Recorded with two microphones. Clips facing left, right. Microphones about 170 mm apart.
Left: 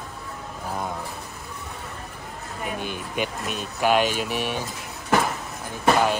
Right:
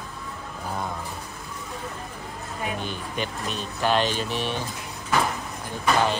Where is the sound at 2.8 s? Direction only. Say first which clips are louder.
Left 2 dB; 10° left (ahead or behind).